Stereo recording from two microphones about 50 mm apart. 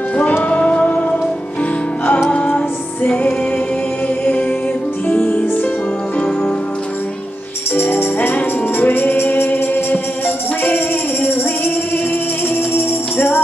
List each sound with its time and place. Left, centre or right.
0.4 s music: left
4.2 s music: left
7.7 s music: left
12.7 s jingle bell: left